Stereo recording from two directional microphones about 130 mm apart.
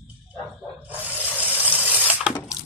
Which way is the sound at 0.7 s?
10° right (ahead or behind).